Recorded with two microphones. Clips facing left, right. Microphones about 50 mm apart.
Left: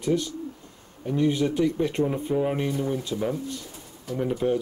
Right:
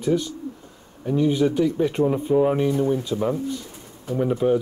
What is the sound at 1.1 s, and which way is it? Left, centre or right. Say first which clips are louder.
Speech: right 3 dB; centre.